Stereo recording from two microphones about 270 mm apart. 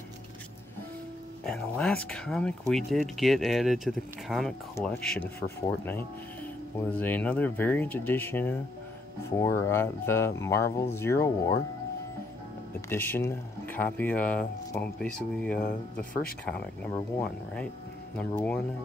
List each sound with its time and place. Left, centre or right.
1.4 s speech: centre
6.9 s speech: centre
12.9 s speech: centre
15.6 s speech: left
16.4 s speech: centre